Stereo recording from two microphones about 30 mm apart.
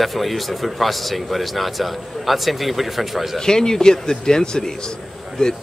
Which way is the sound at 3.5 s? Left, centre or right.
Left.